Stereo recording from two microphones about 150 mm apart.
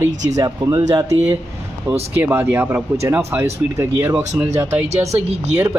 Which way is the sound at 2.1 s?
15° right (ahead or behind).